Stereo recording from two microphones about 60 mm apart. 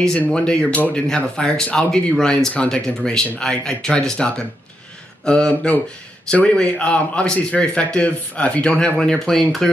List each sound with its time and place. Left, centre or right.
0.3 s speech: centre